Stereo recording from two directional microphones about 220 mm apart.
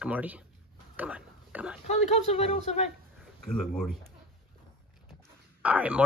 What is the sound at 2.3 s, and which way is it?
Speech, 30° left (ahead or behind).